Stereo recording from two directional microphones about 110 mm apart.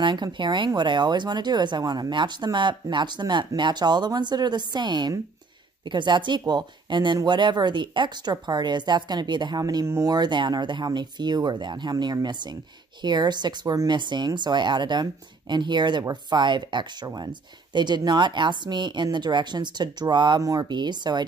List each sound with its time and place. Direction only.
0.0 s speech: 45° right (ahead or behind)